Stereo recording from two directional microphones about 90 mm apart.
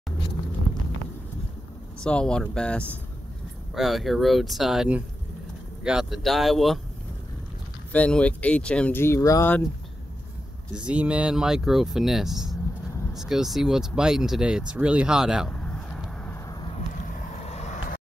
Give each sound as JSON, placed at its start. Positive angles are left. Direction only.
{"t": 2.0, "sound": "speech", "side_deg": 10}
{"t": 3.7, "sound": "speech", "side_deg": 0}
{"t": 5.9, "sound": "speech", "side_deg": -5}
{"t": 7.9, "sound": "speech", "side_deg": 15}
{"t": 8.9, "sound": "speech", "side_deg": 30}
{"t": 10.7, "sound": "speech", "side_deg": -10}
{"t": 15.5, "sound": "a sound", "side_deg": 15}